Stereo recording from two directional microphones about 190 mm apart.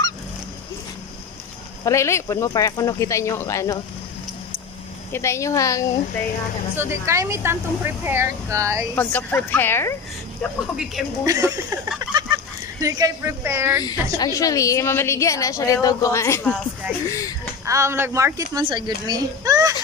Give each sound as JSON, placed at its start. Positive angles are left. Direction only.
{"t": 1.9, "sound": "a woman's voice", "side_deg": 15}
{"t": 5.1, "sound": "a woman's voice", "side_deg": 15}
{"t": 6.8, "sound": "speech", "side_deg": -15}
{"t": 8.9, "sound": "a woman's voice", "side_deg": 10}
{"t": 11.2, "sound": "speech", "side_deg": -15}
{"t": 12.1, "sound": "fowl", "side_deg": -20}
{"t": 12.8, "sound": "speech", "side_deg": -20}
{"t": 13.8, "sound": "a woman's voice", "side_deg": 20}
{"t": 17.6, "sound": "a child's voice", "side_deg": -15}